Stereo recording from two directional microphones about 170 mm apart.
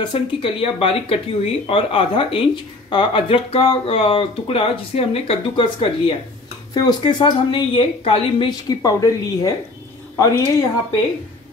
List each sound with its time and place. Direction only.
0.0 s a woman's voice: 30° left (ahead or behind)